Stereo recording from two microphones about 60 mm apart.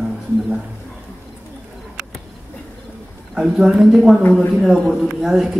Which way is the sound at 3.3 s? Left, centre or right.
Centre.